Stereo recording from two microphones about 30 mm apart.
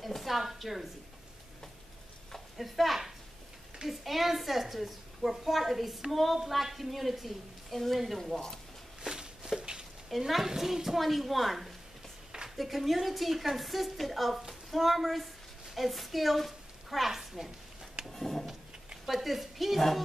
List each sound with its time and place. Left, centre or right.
0.0 s a woman's voice: centre
2.5 s a woman's voice: centre
7.7 s a woman's voice: centre
9.0 s a sound: right
10.0 s a child's voice: centre
11.0 s a woman's voice: centre
18.0 s a sound: centre
19.0 s a woman's voice: centre